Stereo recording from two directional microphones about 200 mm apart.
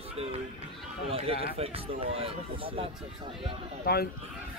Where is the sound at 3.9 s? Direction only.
50° left (ahead or behind).